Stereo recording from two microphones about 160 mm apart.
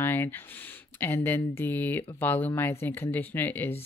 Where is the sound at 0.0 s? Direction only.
10° left (ahead or behind).